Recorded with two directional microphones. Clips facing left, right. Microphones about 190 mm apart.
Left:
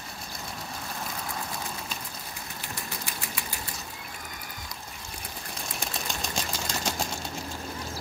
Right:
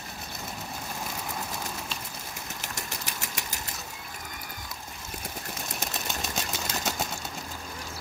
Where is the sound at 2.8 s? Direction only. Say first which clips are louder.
Left 1 dB; 45° right (ahead or behind).